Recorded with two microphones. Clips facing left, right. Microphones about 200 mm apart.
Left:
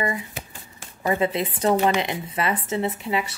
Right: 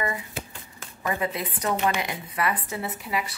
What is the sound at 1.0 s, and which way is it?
Speech, 25° left (ahead or behind).